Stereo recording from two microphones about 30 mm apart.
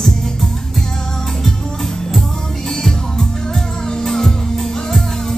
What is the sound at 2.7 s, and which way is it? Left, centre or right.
Music, centre.